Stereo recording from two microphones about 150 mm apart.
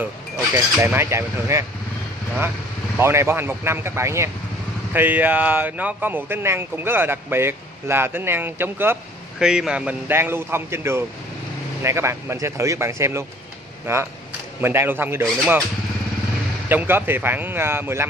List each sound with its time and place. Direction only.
0.5 s speech: 15° right (ahead or behind)
3.0 s speech: 15° right (ahead or behind)
16.6 s speech: 15° right (ahead or behind)